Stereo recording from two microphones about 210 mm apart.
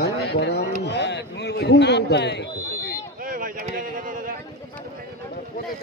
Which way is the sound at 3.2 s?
40° right (ahead or behind).